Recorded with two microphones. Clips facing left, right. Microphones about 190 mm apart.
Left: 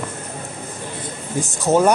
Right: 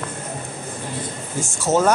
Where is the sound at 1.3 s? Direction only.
15° left (ahead or behind).